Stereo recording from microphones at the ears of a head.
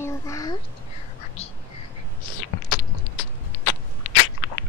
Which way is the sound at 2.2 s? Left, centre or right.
Left.